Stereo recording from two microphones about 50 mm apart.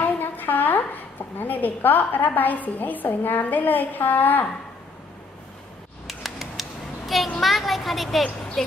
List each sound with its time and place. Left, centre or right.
0.0 s a woman's voice: left
6.0 s a sound: centre
7.4 s a woman's voice: centre